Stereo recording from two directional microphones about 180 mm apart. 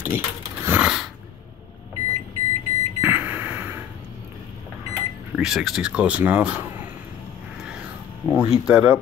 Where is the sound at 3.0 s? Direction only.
10° right (ahead or behind).